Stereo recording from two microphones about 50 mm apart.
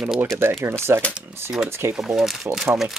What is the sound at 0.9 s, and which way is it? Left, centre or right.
Speech, right.